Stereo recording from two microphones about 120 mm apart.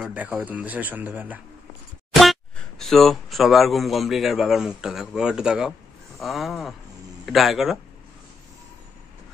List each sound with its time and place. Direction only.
0.1 s speech: 10° right (ahead or behind)
2.8 s a man's voice: centre (ahead or behind)